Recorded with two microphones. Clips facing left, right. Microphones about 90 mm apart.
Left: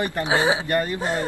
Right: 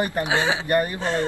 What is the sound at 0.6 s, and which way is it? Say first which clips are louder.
Speech: right 2 dB; 20° right (ahead or behind).